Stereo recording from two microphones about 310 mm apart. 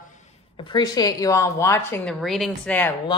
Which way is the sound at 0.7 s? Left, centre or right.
Centre.